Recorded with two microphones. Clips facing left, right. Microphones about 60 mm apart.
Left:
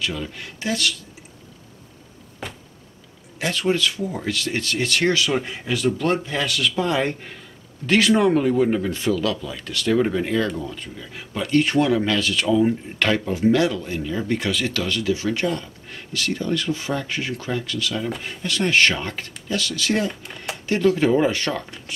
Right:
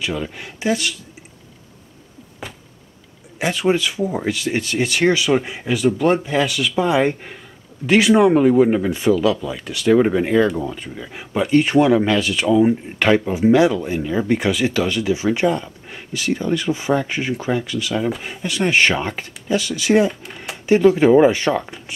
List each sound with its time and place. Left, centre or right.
0.0 s speech: centre
2.4 s a sound: centre
3.3 s speech: centre
20.1 s speech: centre
20.6 s speech: centre